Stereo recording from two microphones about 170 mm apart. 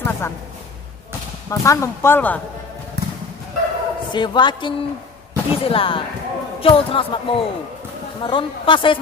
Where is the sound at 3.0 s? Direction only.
75° right (ahead or behind).